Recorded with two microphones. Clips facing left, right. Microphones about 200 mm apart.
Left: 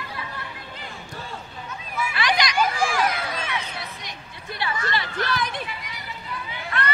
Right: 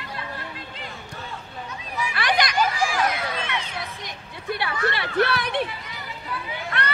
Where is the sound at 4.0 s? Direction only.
60° right (ahead or behind).